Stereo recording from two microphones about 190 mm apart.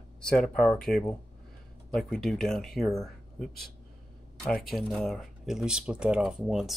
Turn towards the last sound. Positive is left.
turn(degrees=-5)  # may be behind; listen again after turning